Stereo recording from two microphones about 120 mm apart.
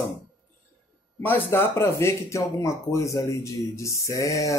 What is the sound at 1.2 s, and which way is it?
Speech, 20° left (ahead or behind).